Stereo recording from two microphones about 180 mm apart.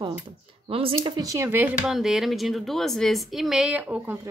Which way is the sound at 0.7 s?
30° right (ahead or behind).